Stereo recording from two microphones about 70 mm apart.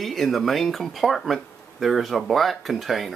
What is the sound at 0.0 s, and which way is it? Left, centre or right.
Speech, centre.